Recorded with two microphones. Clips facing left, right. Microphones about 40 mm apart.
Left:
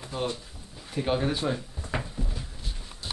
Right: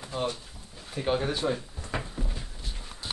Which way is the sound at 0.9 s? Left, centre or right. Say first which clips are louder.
Left 1 dB; centre.